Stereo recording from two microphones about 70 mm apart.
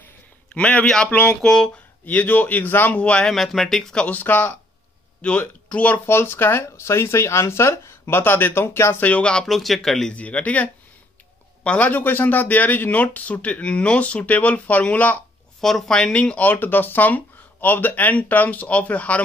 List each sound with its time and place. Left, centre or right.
0.5 s speech: centre
3.0 s speech: centre
3.3 s speech: centre
4.1 s speech: left
6.0 s speech: left
9.0 s speech: centre
10.1 s speech: centre
15.6 s speech: centre